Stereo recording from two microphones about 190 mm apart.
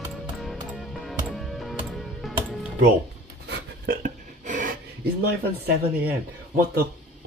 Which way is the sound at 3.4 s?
55° right (ahead or behind).